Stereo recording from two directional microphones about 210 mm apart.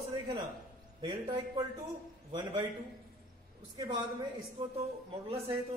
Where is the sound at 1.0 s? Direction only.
20° right (ahead or behind).